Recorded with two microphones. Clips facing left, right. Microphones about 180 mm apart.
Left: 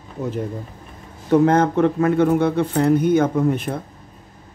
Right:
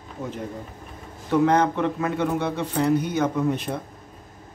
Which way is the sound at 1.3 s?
45° left (ahead or behind).